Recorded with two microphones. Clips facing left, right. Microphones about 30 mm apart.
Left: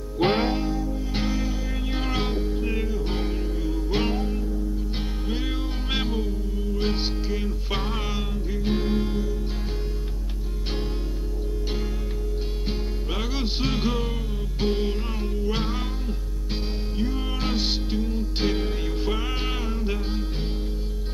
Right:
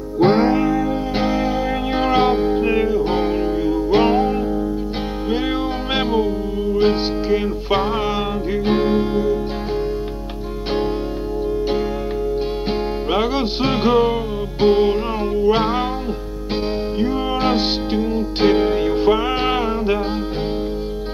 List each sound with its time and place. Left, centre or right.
1.1 s music: right
3.0 s music: right
5.9 s music: right
12.6 s music: right
17.0 s music: right